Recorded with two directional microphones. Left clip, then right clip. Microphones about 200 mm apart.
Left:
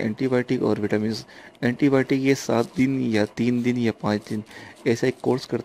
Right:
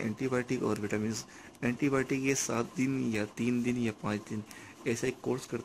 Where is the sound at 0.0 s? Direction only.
30° left (ahead or behind).